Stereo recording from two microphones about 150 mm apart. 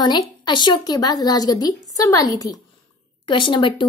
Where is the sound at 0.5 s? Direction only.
30° left (ahead or behind).